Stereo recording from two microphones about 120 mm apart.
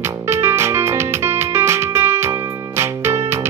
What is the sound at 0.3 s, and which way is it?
Music, 20° right (ahead or behind).